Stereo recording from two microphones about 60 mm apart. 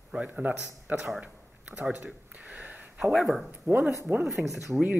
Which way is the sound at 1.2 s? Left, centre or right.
Right.